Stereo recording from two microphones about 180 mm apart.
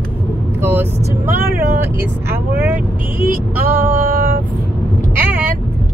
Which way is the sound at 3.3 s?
50° right (ahead or behind).